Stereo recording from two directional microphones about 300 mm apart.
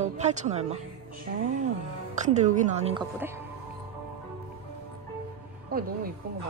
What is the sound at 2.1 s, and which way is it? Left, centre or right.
Speech, right.